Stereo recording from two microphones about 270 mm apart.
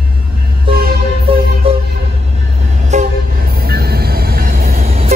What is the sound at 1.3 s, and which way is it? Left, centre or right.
Music, right.